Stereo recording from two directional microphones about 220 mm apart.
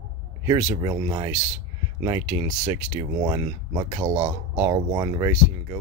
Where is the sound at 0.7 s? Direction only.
20° right (ahead or behind).